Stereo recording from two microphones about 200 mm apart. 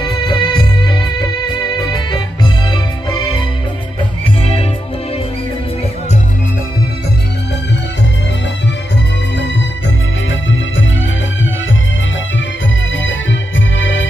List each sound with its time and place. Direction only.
0.0 s music: 25° left (ahead or behind)
12.9 s music: 70° left (ahead or behind)